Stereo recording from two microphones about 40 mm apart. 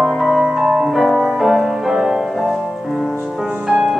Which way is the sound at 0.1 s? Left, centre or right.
Centre.